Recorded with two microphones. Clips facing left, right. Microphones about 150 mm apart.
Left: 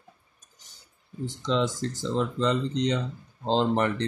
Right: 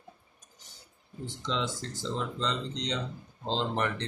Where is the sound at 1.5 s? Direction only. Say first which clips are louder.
Left 7 dB; 40° left (ahead or behind).